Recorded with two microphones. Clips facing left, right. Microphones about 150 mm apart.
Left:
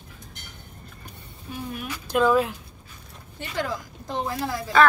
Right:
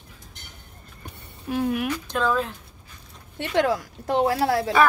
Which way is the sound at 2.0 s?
10° left (ahead or behind).